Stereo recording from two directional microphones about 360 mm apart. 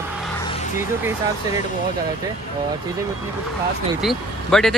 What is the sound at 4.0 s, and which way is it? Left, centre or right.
Speech, centre.